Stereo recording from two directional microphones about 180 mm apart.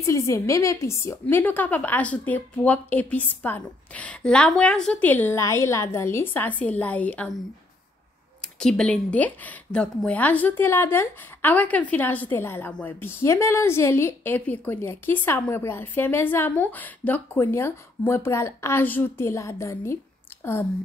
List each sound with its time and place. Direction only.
0.0 s speech: 15° left (ahead or behind)